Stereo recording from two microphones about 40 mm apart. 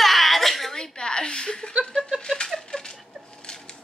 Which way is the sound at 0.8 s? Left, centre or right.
Left.